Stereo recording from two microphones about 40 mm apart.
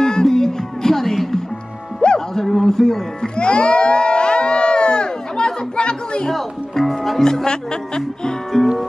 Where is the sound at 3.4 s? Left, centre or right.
Left.